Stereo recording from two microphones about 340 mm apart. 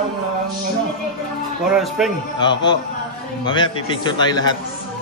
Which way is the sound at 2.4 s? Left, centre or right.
Centre.